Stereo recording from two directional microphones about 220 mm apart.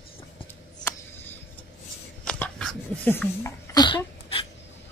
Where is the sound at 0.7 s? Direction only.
10° left (ahead or behind).